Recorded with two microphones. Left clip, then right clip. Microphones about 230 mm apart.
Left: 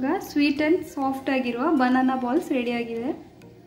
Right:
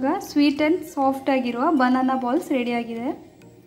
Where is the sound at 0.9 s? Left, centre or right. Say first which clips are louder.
Right 4 dB; right.